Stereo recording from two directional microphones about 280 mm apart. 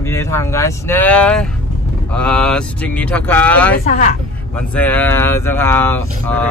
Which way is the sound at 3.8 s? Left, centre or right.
Left.